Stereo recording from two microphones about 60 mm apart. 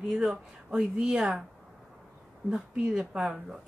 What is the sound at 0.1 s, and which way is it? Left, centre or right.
A woman's voice, centre.